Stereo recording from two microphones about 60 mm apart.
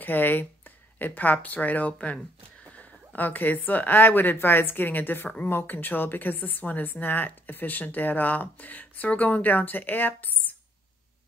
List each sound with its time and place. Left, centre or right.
0.0 s a woman's voice: left